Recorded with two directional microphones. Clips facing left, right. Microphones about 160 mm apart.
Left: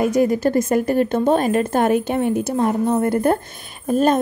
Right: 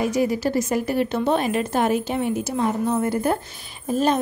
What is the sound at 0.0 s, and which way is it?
A woman's voice, 50° left (ahead or behind).